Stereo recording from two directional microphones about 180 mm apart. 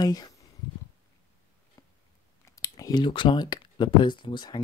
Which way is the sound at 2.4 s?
15° left (ahead or behind).